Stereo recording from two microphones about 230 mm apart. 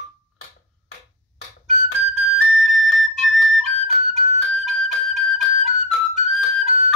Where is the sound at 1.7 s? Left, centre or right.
Right.